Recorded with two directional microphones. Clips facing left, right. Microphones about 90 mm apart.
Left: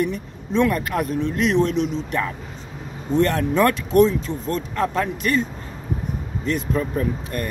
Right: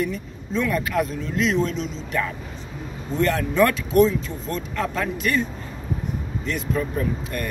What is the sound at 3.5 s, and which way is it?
A man's voice, 50° left (ahead or behind).